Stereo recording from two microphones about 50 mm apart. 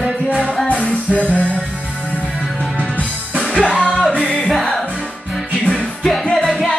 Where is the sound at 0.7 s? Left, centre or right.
Left.